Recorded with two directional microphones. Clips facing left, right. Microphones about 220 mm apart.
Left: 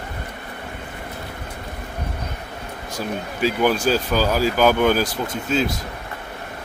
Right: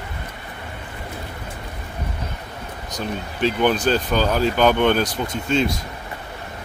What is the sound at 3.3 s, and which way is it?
Speech, 5° left (ahead or behind).